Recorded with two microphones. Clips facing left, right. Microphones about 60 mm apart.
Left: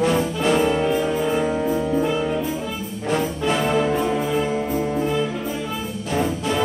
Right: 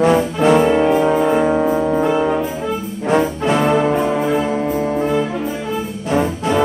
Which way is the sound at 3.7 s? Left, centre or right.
Right.